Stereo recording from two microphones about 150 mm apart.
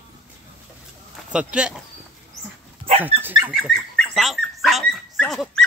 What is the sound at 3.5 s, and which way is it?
Dog, centre (ahead or behind).